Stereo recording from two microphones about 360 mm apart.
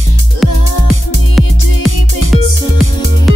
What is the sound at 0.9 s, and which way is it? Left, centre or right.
Music, left.